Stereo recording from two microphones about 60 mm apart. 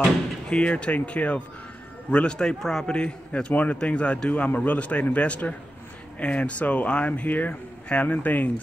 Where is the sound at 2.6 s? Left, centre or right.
Centre.